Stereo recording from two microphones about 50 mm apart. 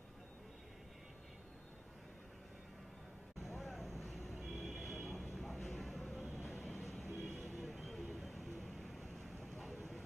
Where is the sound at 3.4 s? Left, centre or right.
Centre.